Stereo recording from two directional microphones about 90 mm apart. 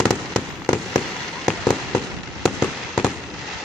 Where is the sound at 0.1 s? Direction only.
5° left (ahead or behind).